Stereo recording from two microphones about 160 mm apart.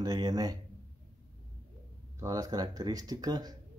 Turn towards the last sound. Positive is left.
turn(degrees=-25)  # may be behind; listen again after turning